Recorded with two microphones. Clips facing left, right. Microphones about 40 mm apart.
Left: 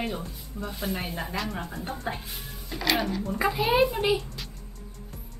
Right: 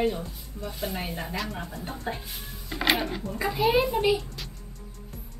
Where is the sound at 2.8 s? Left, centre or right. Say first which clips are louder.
Right 1 dB; right.